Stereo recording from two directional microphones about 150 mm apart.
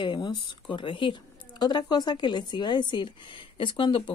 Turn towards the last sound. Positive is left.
turn(degrees=35)  # may be behind; listen again after turning